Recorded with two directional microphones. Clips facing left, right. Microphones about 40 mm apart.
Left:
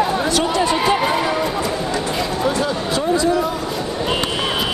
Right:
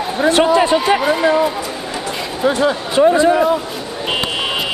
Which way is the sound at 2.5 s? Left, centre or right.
Right.